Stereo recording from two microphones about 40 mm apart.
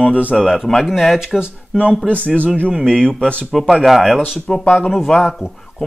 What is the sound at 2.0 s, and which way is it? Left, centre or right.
A man's voice, left.